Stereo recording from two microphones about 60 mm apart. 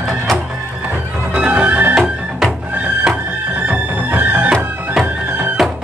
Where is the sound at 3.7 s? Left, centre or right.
Right.